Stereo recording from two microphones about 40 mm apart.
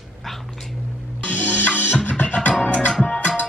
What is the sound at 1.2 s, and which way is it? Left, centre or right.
Music, left.